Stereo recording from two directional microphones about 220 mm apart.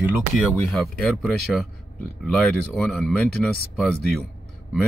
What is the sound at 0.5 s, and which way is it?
Speech, centre (ahead or behind).